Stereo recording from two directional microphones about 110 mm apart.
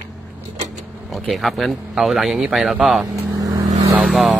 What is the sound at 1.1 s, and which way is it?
Speech, centre (ahead or behind).